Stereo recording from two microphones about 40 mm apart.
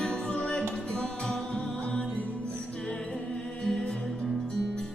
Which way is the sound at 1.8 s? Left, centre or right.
Left.